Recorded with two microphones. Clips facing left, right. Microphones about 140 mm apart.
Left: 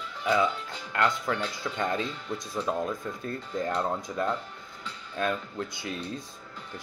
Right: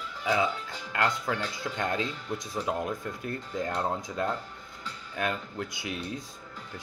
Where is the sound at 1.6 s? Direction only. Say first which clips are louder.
Left 1 dB; 20° right (ahead or behind).